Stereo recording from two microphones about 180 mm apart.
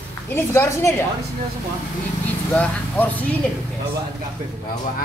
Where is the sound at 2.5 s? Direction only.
10° left (ahead or behind).